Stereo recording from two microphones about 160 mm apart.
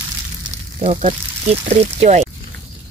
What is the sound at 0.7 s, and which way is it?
Speech, 50° right (ahead or behind).